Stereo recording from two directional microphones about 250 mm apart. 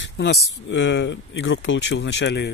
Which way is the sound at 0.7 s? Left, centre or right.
Left.